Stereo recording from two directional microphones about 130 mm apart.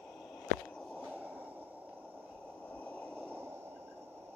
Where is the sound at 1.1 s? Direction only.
15° right (ahead or behind).